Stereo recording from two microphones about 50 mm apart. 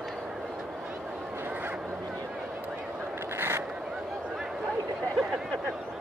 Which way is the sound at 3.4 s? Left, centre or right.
Right.